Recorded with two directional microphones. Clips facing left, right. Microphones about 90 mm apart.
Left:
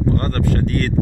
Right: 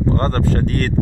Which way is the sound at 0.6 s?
40° right (ahead or behind).